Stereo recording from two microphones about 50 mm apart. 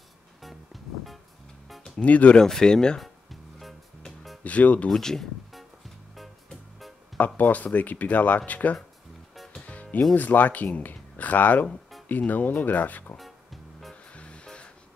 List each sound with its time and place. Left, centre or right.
2.0 s speech: left
2.3 s speech: centre
3.0 s music: centre
4.4 s music: left
4.8 s speech: centre
7.3 s speech: left
9.6 s music: left
10.1 s speech: left
13.2 s music: centre
14.1 s music: left